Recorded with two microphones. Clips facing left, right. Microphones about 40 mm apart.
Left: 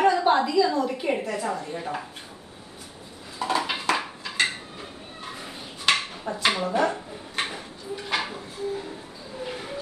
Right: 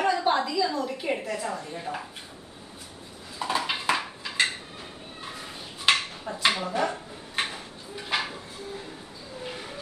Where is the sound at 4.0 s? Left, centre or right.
Centre.